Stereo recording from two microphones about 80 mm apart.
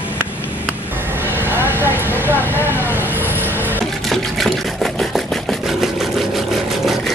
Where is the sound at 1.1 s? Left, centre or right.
Right.